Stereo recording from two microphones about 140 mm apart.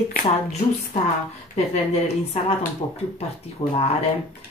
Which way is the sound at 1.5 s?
50° left (ahead or behind).